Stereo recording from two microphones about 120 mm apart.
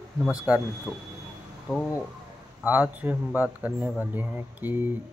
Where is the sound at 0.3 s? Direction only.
10° right (ahead or behind).